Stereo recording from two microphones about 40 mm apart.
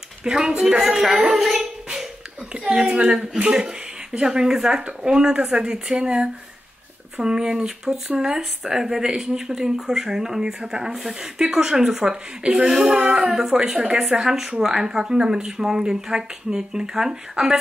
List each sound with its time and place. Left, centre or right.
0.2 s speech: centre
1.4 s speech: centre
2.5 s a woman's voice: right; by 11.2 s centre
11.3 s speech: centre